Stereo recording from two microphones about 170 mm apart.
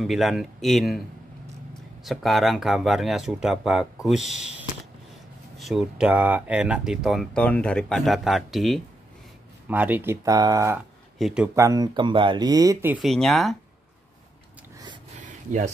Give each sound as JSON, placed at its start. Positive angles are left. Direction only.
{"t": 0.0, "sound": "speech", "side_deg": 0}
{"t": 2.0, "sound": "speech", "side_deg": 0}
{"t": 9.7, "sound": "speech", "side_deg": -10}
{"t": 11.1, "sound": "speech", "side_deg": -5}
{"t": 11.5, "sound": "speech", "side_deg": -20}
{"t": 12.9, "sound": "speech", "side_deg": 0}
{"t": 15.2, "sound": "a sound", "side_deg": -45}